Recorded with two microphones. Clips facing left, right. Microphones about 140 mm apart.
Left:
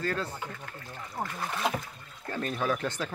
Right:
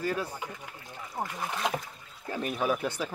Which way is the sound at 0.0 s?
10° right (ahead or behind).